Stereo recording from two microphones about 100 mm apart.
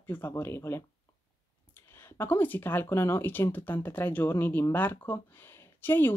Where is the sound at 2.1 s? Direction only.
20° left (ahead or behind).